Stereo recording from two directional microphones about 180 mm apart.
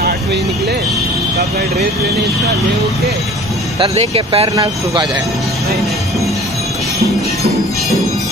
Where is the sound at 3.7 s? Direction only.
35° right (ahead or behind).